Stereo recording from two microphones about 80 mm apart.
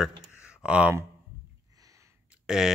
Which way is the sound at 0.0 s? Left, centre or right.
Centre.